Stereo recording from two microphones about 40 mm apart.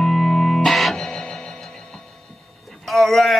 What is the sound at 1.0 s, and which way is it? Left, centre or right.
Music, centre.